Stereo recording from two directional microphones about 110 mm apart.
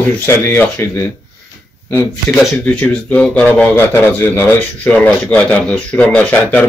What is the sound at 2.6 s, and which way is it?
Speech, 10° left (ahead or behind).